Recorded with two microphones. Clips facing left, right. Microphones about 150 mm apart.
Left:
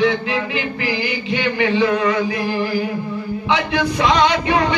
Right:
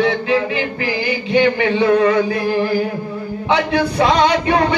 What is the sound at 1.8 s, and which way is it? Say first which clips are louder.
Music: right 6 dB; 35° right (ahead or behind).